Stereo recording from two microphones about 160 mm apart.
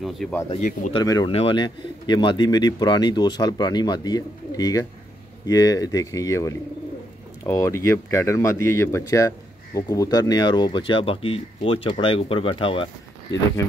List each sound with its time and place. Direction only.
0.0 s speech: centre (ahead or behind)
0.6 s speech: 55° left (ahead or behind)
0.9 s speech: 25° left (ahead or behind)